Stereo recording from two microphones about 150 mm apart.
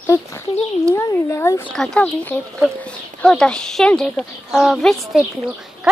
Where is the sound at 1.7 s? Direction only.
5° left (ahead or behind).